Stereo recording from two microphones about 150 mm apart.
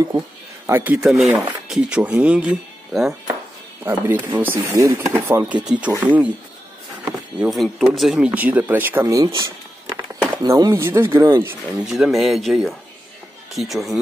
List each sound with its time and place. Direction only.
0.7 s speech: 15° right (ahead or behind)
1.0 s speech: centre (ahead or behind)
4.4 s speech: 15° right (ahead or behind)
7.3 s speech: centre (ahead or behind)
9.0 s a sound: 25° right (ahead or behind)
10.3 s speech: 25° right (ahead or behind)
11.8 s speech: 5° right (ahead or behind)